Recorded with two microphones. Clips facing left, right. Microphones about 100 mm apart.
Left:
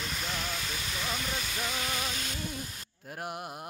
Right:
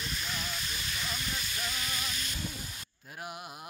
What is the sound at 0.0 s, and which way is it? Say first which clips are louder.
Hiss: left 2 dB; 75° left (ahead or behind).